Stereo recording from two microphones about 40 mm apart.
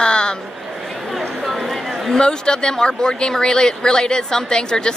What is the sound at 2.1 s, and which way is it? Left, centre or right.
Speech, centre.